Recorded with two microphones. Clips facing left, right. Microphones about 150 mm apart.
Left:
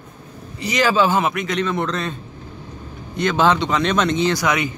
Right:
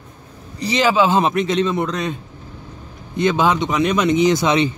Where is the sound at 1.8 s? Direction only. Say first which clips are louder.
Right 2 dB; 15° right (ahead or behind).